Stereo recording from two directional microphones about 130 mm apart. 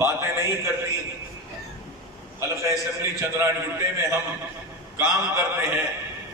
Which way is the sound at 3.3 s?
20° right (ahead or behind).